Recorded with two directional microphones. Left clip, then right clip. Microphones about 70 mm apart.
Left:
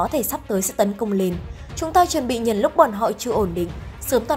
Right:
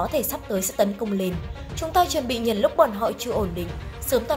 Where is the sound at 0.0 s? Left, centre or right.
Left.